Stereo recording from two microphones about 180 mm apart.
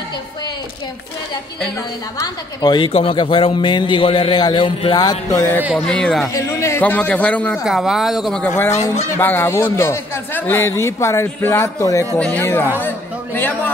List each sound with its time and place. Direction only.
2.1 s a man's voice: 20° left (ahead or behind)
5.6 s speech: 5° right (ahead or behind)
5.9 s a man's voice: 5° left (ahead or behind)
9.1 s a man's voice: 10° left (ahead or behind)